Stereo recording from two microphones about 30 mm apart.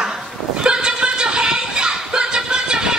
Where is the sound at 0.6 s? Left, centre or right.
Right.